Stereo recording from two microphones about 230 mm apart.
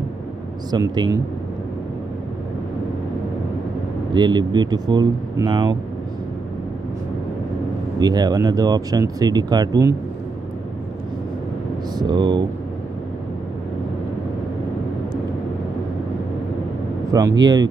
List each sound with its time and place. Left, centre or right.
0.7 s speech: centre
4.1 s speech: centre
8.0 s speech: centre
12.0 s speech: centre
17.1 s speech: centre